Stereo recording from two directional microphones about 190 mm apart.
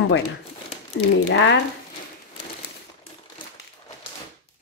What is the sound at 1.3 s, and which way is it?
Speech, 75° left (ahead or behind).